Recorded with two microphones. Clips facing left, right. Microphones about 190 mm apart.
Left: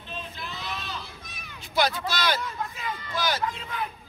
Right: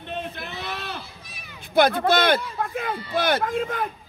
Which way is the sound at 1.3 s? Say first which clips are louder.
Right 1 dB; centre (ahead or behind).